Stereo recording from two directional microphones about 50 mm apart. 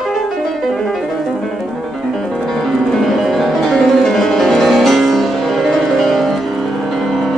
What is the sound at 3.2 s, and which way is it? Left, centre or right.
Music, centre.